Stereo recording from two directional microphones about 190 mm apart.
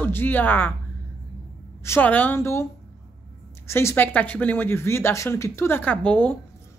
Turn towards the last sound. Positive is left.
turn(degrees=5)  # may be behind; listen again after turning